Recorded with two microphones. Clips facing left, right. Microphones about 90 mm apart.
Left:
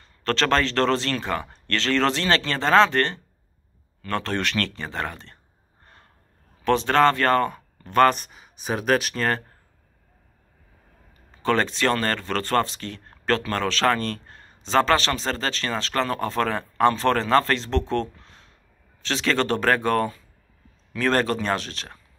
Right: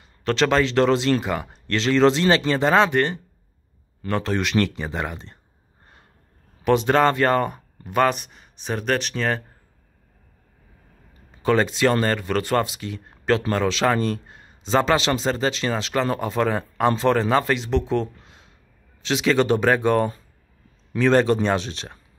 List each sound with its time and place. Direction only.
0.0 s speech: 10° right (ahead or behind)
6.6 s speech: 15° right (ahead or behind); by 9.4 s centre (ahead or behind)
11.4 s speech: 10° right (ahead or behind)
21.1 s speech: 15° right (ahead or behind)